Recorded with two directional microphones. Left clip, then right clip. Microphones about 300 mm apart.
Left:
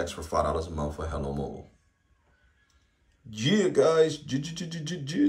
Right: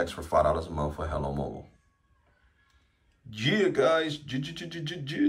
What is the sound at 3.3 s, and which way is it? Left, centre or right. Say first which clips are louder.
Speech: even; centre.